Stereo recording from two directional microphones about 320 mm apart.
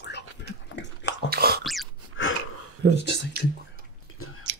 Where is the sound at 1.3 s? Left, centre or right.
Right.